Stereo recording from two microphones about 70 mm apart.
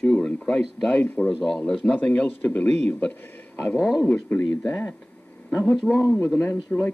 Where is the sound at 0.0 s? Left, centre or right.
Centre.